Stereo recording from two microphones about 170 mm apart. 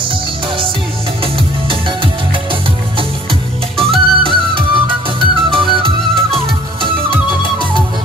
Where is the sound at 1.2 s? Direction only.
30° right (ahead or behind).